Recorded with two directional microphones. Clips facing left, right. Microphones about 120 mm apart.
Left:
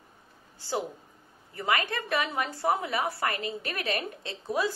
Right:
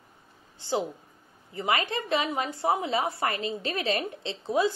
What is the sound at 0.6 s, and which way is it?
A woman's voice, 20° right (ahead or behind).